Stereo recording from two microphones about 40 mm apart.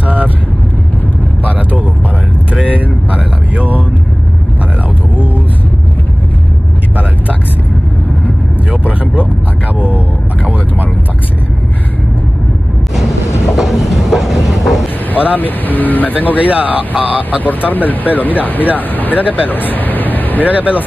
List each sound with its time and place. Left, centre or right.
0.0 s vehicle: right
3.5 s vehicle: right
8.8 s vehicle: right
12.9 s train: centre
15.1 s vehicle: left
16.3 s speech: right
17.4 s speech: left
20.4 s speech: right